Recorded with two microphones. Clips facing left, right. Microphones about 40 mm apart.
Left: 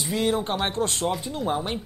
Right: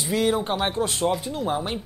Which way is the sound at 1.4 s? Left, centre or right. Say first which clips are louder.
Right 1 dB; centre.